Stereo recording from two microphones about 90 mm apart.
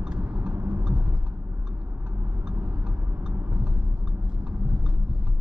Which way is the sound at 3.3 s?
15° right (ahead or behind).